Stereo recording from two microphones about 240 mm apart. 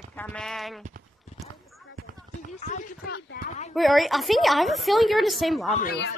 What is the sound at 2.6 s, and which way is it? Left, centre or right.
Speech, left.